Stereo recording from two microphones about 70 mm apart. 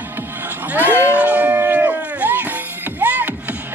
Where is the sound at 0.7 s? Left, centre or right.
Right.